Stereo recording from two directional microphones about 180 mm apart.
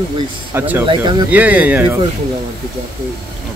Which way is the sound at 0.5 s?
10° right (ahead or behind).